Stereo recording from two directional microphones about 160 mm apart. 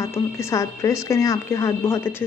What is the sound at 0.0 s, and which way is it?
Speech, 15° left (ahead or behind).